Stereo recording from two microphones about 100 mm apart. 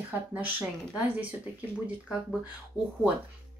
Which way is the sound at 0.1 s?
20° right (ahead or behind).